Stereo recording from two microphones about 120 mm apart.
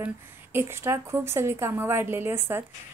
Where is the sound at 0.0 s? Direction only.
20° right (ahead or behind).